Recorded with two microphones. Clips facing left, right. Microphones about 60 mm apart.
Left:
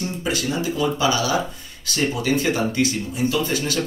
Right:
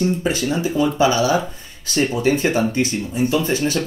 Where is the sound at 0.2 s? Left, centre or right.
Right.